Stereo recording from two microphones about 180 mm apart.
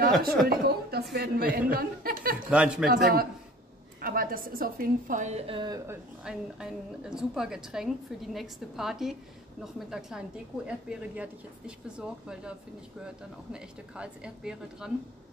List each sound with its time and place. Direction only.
0.5 s a woman's voice: 60° right (ahead or behind)
2.5 s a woman's voice: 5° right (ahead or behind)
2.9 s a woman's voice: 55° right (ahead or behind); by 5.8 s 30° right (ahead or behind)
5.9 s a woman's voice: 5° right (ahead or behind)